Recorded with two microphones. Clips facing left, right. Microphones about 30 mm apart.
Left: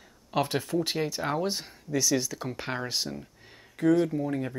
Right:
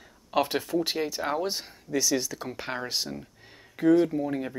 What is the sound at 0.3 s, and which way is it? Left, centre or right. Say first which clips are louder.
Speech: right 2 dB; centre.